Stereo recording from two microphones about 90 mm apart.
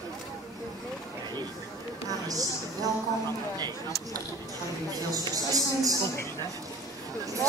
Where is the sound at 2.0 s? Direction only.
40° right (ahead or behind).